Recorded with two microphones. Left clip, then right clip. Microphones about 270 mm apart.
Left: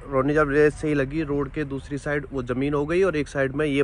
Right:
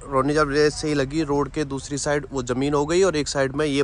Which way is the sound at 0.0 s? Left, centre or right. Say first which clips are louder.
Right 1 dB; centre.